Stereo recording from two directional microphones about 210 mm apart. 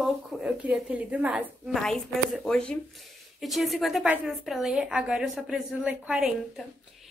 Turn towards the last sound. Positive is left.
turn(degrees=-5)  # may be behind; listen again after turning